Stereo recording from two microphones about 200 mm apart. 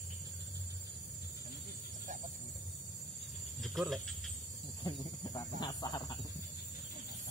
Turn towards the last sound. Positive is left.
turn(degrees=20)  # may be behind; listen again after turning